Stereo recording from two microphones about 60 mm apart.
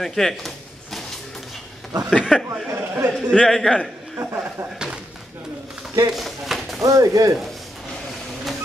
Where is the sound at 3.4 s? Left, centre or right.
Centre.